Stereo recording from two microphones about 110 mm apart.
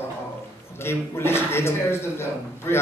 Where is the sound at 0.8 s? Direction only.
20° left (ahead or behind).